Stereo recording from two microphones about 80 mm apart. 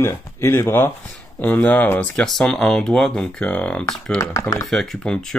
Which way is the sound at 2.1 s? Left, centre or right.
Centre.